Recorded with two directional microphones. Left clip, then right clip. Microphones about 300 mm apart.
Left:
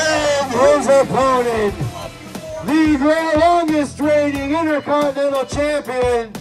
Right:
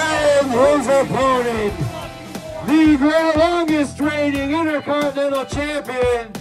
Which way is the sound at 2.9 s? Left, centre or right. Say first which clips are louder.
Even; left.